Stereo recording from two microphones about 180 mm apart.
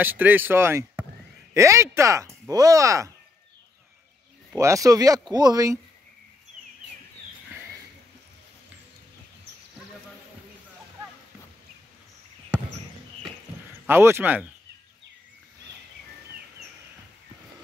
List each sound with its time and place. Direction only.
0.0 s speech: 10° right (ahead or behind)
4.5 s speech: 15° right (ahead or behind)
13.8 s speech: 15° right (ahead or behind)